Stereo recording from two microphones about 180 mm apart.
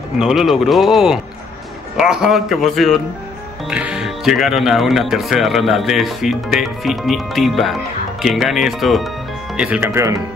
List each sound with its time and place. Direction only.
0.2 s speech: centre (ahead or behind)